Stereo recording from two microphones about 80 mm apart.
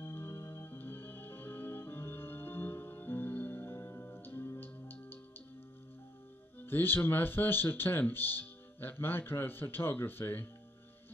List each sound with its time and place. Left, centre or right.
0.0 s music: left
6.6 s speech: left